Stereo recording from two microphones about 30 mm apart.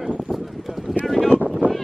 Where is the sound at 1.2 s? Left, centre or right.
Left.